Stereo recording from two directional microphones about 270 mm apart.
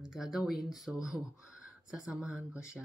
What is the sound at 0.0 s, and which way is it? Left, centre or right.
Speech, centre.